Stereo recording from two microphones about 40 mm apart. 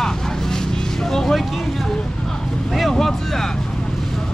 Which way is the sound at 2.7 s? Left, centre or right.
Centre.